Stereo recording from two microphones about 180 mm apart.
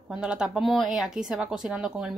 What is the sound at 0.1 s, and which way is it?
Speech, 5° right (ahead or behind).